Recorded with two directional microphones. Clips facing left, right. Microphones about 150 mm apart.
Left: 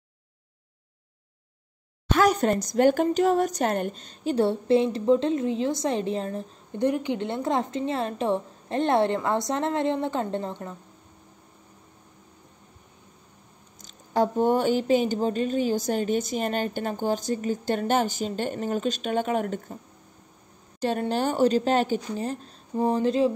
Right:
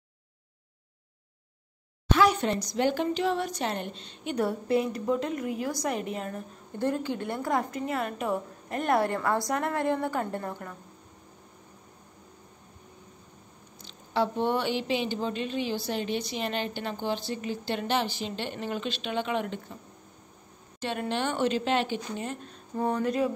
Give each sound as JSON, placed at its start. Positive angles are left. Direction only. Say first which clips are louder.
{"t": 2.1, "sound": "a woman's voice", "louder": "left 3 dB", "side_deg": 45}
{"t": 6.8, "sound": "a woman's voice", "louder": "left 4 dB", "side_deg": 15}
{"t": 13.7, "sound": "speech", "louder": "left 4 dB", "side_deg": 45}
{"t": 20.8, "sound": "a woman's voice", "louder": "left 5 dB", "side_deg": 40}